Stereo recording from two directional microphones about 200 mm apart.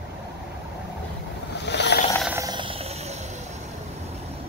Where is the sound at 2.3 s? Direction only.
20° right (ahead or behind).